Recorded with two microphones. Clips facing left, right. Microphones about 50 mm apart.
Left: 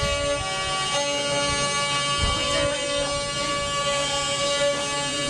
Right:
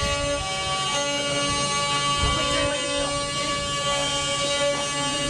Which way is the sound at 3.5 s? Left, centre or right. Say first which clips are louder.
Left 1 dB; centre.